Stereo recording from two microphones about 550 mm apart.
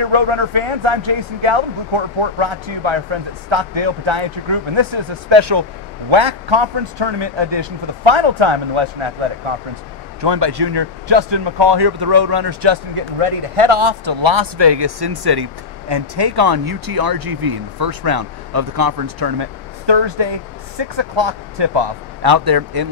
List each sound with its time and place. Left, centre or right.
0.0 s a man's voice: right
10.2 s speech: right
12.9 s speech: right